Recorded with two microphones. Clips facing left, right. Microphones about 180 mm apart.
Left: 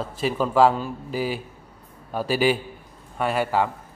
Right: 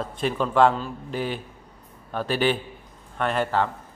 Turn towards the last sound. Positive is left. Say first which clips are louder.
# left 1 dB
turn(degrees=10)  # may be behind; listen again after turning